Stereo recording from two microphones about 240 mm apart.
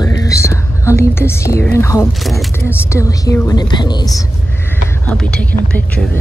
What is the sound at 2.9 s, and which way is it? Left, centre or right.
A woman's voice, centre.